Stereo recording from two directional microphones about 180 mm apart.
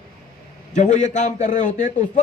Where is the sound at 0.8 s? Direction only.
45° left (ahead or behind).